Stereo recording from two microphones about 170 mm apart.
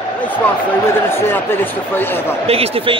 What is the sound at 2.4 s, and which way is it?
Speech, 35° right (ahead or behind).